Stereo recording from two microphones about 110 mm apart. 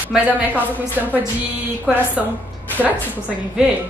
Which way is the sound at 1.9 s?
10° right (ahead or behind).